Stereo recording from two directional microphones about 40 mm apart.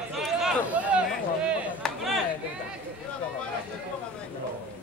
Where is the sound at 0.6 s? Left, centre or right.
Right.